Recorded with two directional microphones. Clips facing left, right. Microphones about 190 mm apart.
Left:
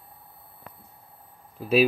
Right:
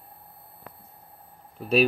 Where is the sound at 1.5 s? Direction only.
Centre (ahead or behind).